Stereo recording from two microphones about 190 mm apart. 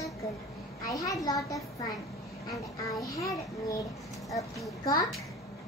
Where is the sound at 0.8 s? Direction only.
20° left (ahead or behind).